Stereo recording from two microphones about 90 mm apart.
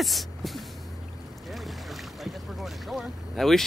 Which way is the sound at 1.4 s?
Centre (ahead or behind).